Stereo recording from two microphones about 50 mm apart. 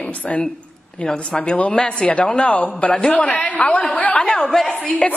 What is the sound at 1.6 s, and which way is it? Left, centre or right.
A woman's voice, left.